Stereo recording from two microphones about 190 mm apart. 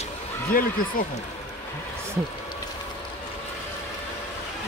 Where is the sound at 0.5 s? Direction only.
50° left (ahead or behind).